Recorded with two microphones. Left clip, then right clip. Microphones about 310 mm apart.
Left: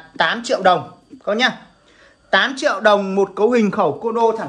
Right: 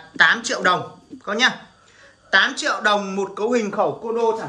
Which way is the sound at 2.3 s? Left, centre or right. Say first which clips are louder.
Left 2 dB; centre.